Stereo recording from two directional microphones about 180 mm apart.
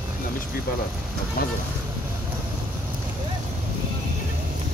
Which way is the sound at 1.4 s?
55° left (ahead or behind).